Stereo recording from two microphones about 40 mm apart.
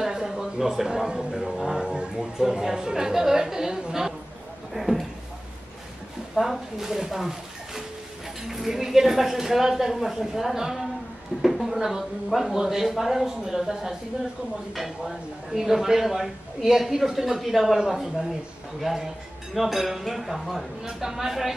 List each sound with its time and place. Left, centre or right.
0.0 s a man's voice: centre
1.8 s speech: centre
4.7 s speech: centre
6.3 s speech: centre
20.8 s speech: centre